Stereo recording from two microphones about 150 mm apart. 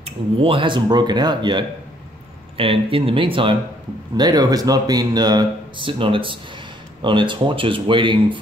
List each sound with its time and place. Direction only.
0.0 s speech: 35° right (ahead or behind)